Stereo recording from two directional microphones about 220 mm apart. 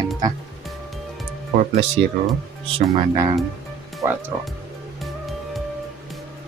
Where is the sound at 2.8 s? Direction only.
15° right (ahead or behind).